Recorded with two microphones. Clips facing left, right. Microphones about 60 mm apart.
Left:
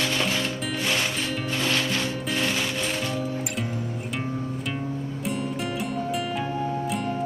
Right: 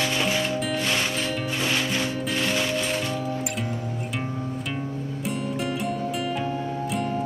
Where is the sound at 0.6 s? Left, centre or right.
Centre.